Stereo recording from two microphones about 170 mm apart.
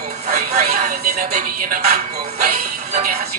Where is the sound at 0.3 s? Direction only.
45° right (ahead or behind).